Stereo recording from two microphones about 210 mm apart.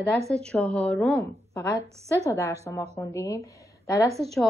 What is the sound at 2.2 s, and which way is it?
A woman's voice, 15° left (ahead or behind).